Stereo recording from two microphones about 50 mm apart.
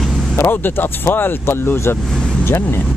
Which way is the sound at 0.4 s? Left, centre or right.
Left.